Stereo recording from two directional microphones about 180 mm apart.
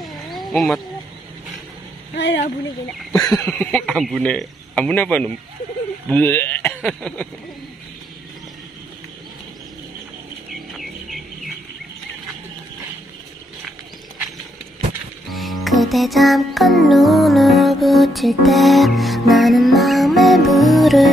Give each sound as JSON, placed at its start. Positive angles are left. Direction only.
{"t": 0.5, "sound": "speech", "side_deg": 0}
{"t": 2.1, "sound": "speech", "side_deg": 80}
{"t": 3.4, "sound": "a man's voice", "side_deg": 5}
{"t": 10.7, "sound": "bird", "side_deg": 0}
{"t": 15.2, "sound": "music", "side_deg": 0}